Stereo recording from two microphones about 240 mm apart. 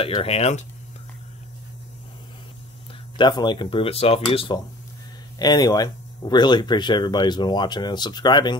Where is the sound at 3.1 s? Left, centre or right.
Centre.